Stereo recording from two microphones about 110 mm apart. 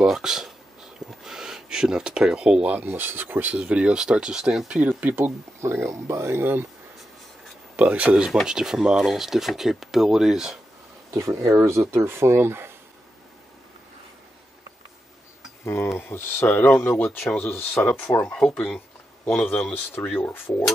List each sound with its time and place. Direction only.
0.0 s speech: 5° right (ahead or behind); by 6.6 s 20° right (ahead or behind)
7.7 s speech: 10° right (ahead or behind)
11.1 s speech: 30° right (ahead or behind)
15.6 s speech: 20° left (ahead or behind)